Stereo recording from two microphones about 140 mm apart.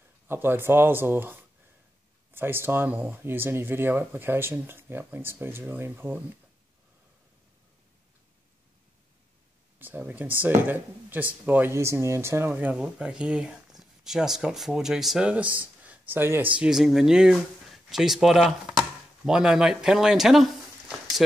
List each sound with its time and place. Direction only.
0.3 s speech: 15° right (ahead or behind)
9.8 s speech: 15° right (ahead or behind)
16.5 s speech: 5° right (ahead or behind)